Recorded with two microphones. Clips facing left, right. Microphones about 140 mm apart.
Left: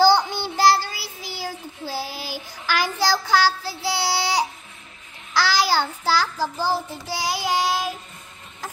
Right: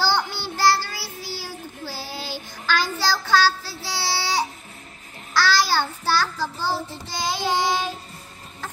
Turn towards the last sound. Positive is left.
turn(degrees=10)  # may be behind; listen again after turning